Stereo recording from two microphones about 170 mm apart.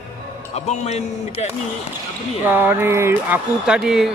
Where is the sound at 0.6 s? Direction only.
40° left (ahead or behind).